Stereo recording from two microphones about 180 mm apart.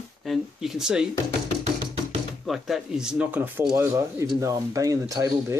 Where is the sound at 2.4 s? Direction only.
Centre (ahead or behind).